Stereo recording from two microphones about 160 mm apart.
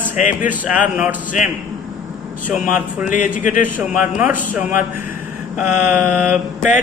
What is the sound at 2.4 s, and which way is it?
Speech, 55° left (ahead or behind).